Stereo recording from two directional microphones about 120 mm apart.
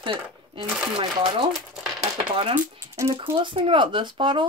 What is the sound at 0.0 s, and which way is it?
Speech, 45° right (ahead or behind).